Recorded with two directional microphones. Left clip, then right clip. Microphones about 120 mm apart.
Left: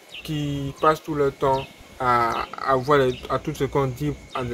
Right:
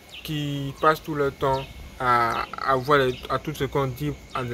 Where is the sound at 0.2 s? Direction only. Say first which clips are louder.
Left 1 dB; 5° left (ahead or behind).